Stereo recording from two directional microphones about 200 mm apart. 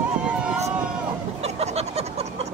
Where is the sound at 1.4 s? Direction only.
30° right (ahead or behind).